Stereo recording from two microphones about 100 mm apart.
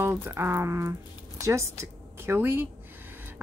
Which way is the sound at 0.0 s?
25° right (ahead or behind).